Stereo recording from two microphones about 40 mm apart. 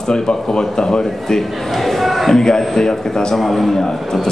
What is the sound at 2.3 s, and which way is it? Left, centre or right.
A man's voice, centre.